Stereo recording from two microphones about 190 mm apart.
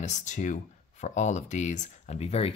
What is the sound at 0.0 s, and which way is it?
Speech, 40° left (ahead or behind).